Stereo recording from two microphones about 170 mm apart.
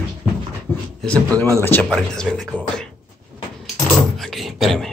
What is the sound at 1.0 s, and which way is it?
Speech, 5° left (ahead or behind).